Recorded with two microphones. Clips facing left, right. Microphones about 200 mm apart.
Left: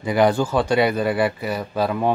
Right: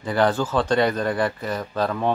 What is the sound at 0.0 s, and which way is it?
Speech, 10° left (ahead or behind).